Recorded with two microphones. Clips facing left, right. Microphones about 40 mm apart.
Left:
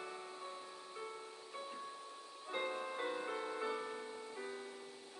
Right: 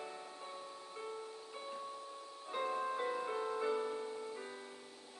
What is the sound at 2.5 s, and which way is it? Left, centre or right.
Music, centre.